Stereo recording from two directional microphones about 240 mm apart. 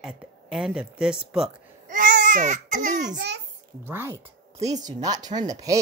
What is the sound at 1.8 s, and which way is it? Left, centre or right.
Baby cry, right.